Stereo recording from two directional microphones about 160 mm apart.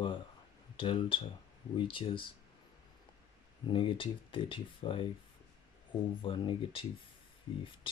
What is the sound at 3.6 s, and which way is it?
Speech, 30° left (ahead or behind).